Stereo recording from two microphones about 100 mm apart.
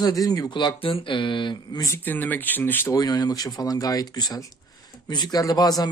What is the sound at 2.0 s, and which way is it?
Speech, 20° left (ahead or behind).